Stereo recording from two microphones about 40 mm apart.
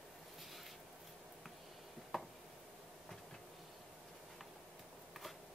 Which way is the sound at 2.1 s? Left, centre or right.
Centre.